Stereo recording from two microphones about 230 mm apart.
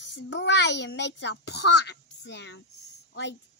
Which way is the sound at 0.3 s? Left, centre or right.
Left.